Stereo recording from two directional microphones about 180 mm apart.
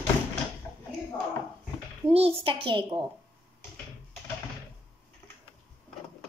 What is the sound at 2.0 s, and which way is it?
Speech, 35° right (ahead or behind).